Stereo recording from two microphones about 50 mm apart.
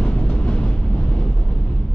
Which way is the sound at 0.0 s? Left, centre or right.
Left.